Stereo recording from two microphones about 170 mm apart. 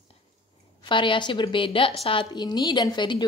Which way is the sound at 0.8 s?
30° left (ahead or behind).